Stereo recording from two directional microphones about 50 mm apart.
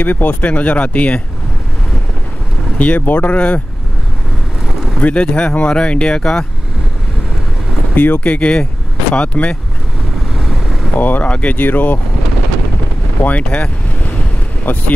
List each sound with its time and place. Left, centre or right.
0.0 s speech: left
2.8 s speech: left
5.0 s speech: left
7.9 s speech: left
11.0 s speech: left
11.5 s speech: left
13.2 s speech: left
14.7 s speech: left